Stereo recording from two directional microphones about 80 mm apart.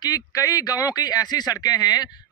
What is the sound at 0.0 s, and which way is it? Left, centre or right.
Speech, left.